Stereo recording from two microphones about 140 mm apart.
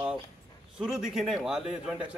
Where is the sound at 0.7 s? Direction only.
5° right (ahead or behind).